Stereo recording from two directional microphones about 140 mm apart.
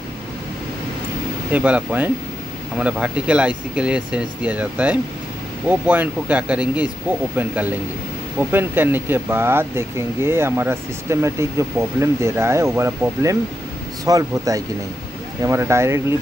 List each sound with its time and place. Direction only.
1.5 s speech: 10° right (ahead or behind)